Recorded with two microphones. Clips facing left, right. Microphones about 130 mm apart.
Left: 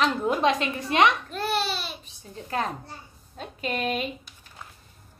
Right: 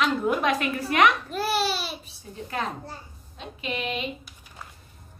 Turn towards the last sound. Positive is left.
turn(degrees=45)  # may be behind; listen again after turning